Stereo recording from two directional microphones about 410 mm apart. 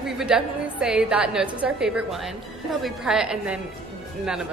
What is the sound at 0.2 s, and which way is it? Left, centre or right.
Speech, centre.